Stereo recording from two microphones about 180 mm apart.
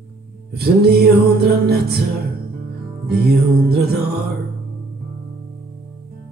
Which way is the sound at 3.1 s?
60° right (ahead or behind).